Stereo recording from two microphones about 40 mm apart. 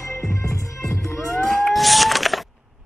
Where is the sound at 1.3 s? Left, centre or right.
Centre.